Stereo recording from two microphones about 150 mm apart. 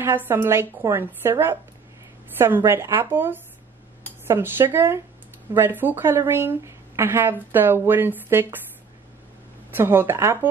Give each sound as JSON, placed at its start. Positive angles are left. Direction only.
{"t": 0.0, "sound": "speech", "side_deg": -15}
{"t": 2.3, "sound": "speech", "side_deg": -15}
{"t": 9.7, "sound": "speech", "side_deg": -15}